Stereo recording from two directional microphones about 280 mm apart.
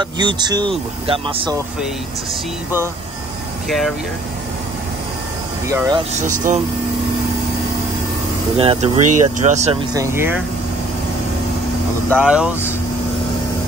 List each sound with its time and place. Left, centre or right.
0.0 s speech: centre
3.6 s speech: centre
5.7 s speech: centre
6.1 s speech: right
8.5 s speech: right
9.0 s speech: right
9.4 s speech: right
9.9 s speech: centre
12.2 s speech: centre